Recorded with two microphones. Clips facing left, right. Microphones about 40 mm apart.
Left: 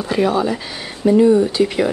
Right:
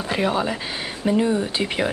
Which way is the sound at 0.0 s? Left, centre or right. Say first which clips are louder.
Left 5 dB; centre.